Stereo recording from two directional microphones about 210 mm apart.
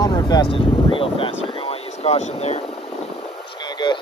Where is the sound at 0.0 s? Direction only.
20° left (ahead or behind).